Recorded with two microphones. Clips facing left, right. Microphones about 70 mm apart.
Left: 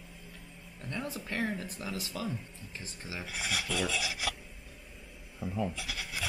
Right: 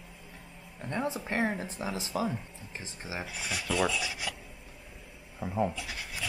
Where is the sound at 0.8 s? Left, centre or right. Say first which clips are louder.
Right 6 dB; right.